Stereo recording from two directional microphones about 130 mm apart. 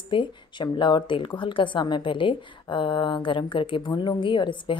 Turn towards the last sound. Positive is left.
turn(degrees=40)  # may be behind; listen again after turning